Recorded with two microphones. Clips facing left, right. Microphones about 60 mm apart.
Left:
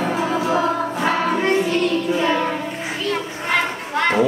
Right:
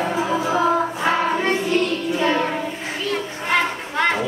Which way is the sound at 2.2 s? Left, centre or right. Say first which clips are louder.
Right 3 dB; centre.